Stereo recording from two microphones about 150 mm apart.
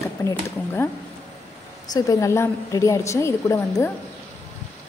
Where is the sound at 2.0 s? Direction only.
20° left (ahead or behind).